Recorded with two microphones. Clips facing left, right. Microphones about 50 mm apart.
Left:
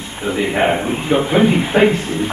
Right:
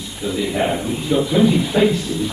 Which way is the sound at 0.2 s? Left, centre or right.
Left.